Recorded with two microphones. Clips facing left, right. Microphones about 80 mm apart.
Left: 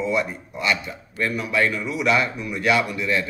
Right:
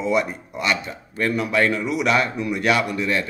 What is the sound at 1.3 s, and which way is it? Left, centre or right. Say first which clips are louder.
Speech: right 3 dB; right.